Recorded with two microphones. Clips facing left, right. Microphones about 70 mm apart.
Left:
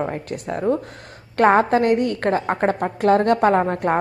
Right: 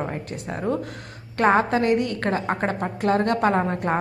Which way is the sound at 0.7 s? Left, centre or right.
Left.